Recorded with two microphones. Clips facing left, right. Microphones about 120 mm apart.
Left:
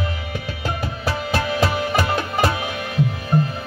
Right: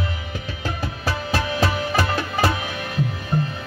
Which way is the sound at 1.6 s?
15° left (ahead or behind).